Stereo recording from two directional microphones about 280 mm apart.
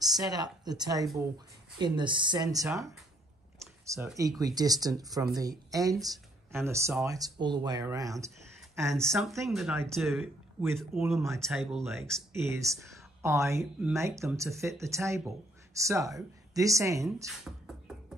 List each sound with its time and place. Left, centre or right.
0.2 s speech: centre
2.7 s speech: centre
3.8 s speech: centre
8.5 s a sound: centre
9.1 s speech: centre
11.4 s speech: centre
17.3 s beatboxing: centre